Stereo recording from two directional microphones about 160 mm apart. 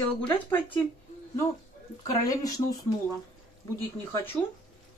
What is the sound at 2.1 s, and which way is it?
Speech, 20° left (ahead or behind).